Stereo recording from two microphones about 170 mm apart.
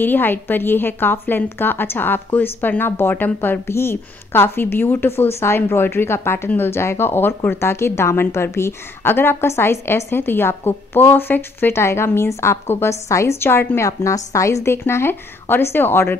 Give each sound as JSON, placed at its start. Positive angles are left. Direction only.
{"t": 0.0, "sound": "a woman's voice", "side_deg": 10}